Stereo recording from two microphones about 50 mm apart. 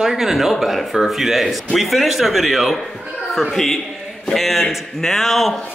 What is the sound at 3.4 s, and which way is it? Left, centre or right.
A man's voice, centre.